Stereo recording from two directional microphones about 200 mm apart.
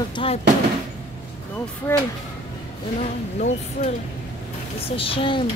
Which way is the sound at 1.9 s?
10° left (ahead or behind).